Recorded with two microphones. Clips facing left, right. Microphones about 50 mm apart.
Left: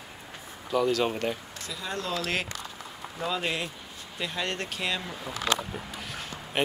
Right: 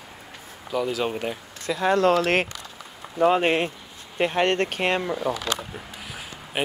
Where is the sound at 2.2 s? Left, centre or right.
Right.